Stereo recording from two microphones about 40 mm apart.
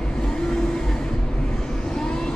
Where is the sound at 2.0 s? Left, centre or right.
Centre.